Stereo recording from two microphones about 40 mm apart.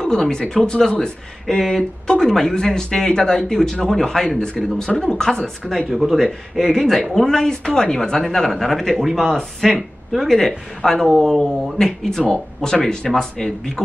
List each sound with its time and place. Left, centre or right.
0.0 s speech: centre
1.6 s speech: centre
5.9 s speech: centre
6.7 s speech: centre